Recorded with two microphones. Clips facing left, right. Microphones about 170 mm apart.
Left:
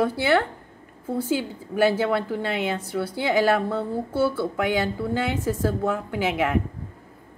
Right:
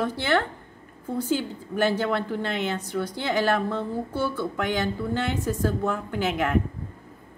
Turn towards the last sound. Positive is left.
turn(degrees=5)  # may be behind; listen again after turning